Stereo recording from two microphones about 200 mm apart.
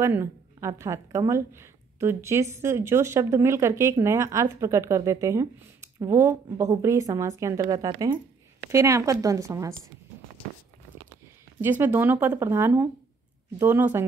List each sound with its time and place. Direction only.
0.0 s a woman's voice: 15° right (ahead or behind)
11.8 s a woman's voice: 10° right (ahead or behind)